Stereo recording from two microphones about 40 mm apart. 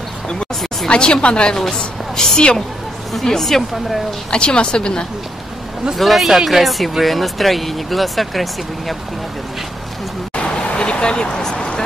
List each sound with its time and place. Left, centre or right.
0.8 s a woman's voice: left
1.6 s a woman's voice: centre
4.3 s speech: left
5.9 s speech: centre
10.3 s vehicle: left